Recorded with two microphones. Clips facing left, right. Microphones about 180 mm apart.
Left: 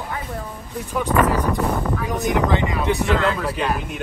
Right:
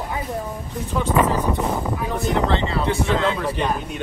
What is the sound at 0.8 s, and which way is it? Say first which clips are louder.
Speech: even; 10° left (ahead or behind).